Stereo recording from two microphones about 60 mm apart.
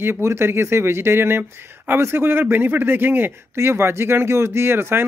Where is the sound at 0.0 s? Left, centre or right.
Right.